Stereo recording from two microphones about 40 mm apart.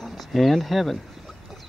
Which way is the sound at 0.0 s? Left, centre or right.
Centre.